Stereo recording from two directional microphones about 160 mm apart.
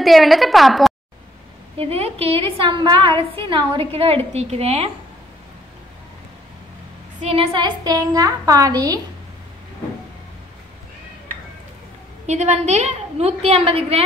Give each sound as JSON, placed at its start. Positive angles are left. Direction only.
{"t": 0.0, "sound": "a woman's voice", "side_deg": 0}
{"t": 1.8, "sound": "a woman's voice", "side_deg": -40}
{"t": 7.2, "sound": "a woman's voice", "side_deg": -30}
{"t": 12.3, "sound": "a woman's voice", "side_deg": -45}